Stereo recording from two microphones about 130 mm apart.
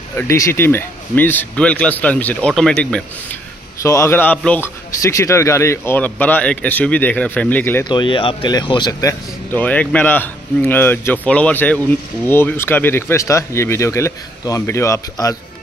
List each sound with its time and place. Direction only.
0.2 s speech: 20° left (ahead or behind)
3.8 s a man's voice: 20° left (ahead or behind)
7.8 s speech: 40° left (ahead or behind)
9.5 s speech: 10° left (ahead or behind)